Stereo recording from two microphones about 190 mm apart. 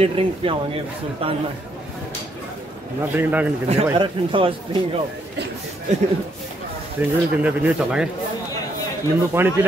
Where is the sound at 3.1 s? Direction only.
10° right (ahead or behind).